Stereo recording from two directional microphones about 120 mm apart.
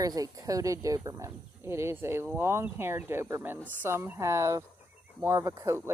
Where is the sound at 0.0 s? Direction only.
30° right (ahead or behind).